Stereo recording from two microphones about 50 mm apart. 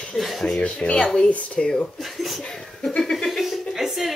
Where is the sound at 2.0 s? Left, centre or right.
Centre.